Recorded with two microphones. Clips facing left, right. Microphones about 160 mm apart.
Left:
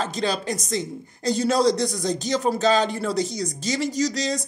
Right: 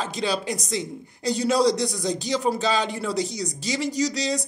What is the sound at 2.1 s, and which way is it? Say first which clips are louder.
Speech: left 1 dB; 45° left (ahead or behind).